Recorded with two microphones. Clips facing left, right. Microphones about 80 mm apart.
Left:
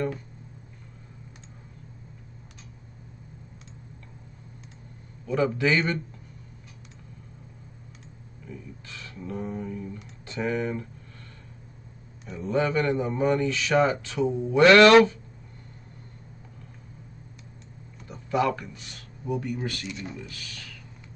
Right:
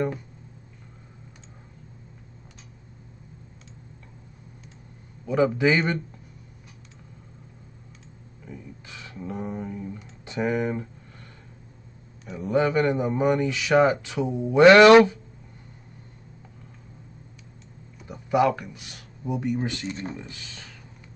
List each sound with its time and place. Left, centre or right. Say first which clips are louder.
5.2 s speech: right 3 dB; centre
8.5 s a sound: even; centre
10.2 s speech: right 3 dB; centre
12.3 s speech: right 3 dB; centre
18.0 s speech: right 4 dB; centre
19.9 s speech: right 3 dB; right